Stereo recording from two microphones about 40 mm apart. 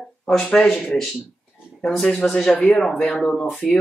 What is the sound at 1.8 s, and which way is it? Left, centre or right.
Speech, centre.